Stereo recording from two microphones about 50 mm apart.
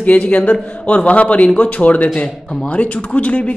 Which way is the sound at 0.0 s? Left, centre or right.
Left.